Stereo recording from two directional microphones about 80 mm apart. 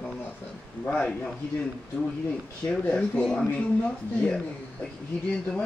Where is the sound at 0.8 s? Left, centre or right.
Centre.